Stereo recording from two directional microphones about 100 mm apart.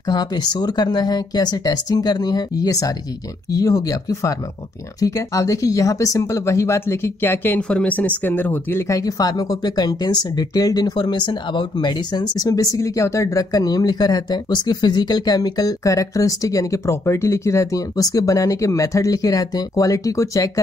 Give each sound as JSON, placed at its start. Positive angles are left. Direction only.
{"t": 0.1, "sound": "speech", "side_deg": 45}
{"t": 8.8, "sound": "speech", "side_deg": 35}